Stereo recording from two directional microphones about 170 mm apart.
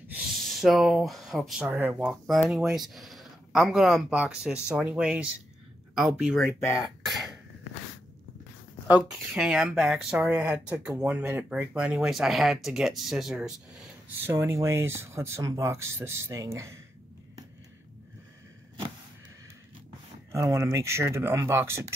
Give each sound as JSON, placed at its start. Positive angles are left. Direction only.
{"t": 0.1, "sound": "speech", "side_deg": -5}
{"t": 8.8, "sound": "speech", "side_deg": -5}
{"t": 20.3, "sound": "speech", "side_deg": -20}